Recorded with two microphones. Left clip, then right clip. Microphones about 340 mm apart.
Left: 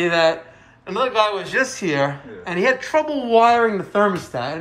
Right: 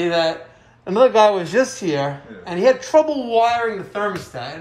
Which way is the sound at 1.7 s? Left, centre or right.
Centre.